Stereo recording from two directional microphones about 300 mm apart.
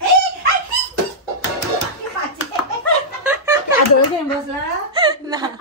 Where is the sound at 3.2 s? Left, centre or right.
Centre.